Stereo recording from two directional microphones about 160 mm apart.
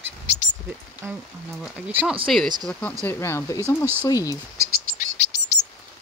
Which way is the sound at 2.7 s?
5° left (ahead or behind).